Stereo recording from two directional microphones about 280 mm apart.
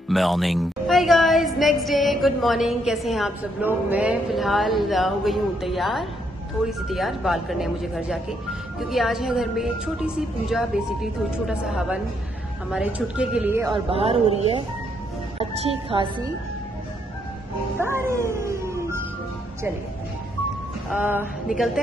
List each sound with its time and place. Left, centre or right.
0.1 s a woman's voice: centre
13.8 s a man's voice: centre
15.3 s a woman's voice: centre
17.7 s music: centre
20.9 s a woman's voice: centre